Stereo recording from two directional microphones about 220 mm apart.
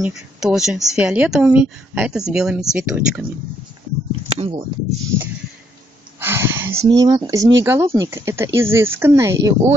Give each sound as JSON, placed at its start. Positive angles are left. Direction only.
{"t": 0.0, "sound": "a woman's voice", "side_deg": 0}
{"t": 4.4, "sound": "speech", "side_deg": -25}
{"t": 6.1, "sound": "a sound", "side_deg": -10}
{"t": 7.0, "sound": "speech", "side_deg": -15}